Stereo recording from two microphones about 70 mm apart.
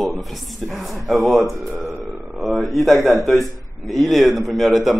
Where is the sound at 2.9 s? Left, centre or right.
Right.